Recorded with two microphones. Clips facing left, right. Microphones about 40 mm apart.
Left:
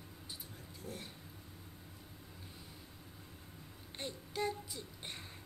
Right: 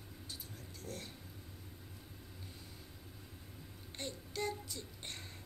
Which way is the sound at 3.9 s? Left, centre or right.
Centre.